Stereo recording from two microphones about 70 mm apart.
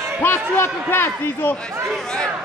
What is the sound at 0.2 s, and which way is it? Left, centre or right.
Speech, left.